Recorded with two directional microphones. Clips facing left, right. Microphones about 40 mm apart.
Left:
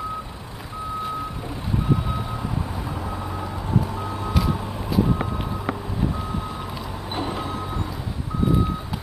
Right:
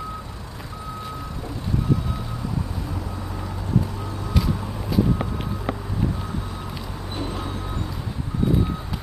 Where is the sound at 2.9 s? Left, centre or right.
Left.